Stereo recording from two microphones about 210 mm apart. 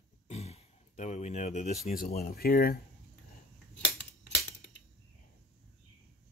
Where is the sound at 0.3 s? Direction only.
30° left (ahead or behind).